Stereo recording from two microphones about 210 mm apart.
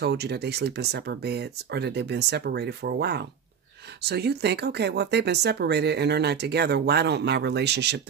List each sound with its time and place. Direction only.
0.0 s speech: 50° right (ahead or behind)